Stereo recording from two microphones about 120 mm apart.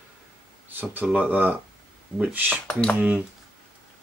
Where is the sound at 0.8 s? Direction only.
15° right (ahead or behind).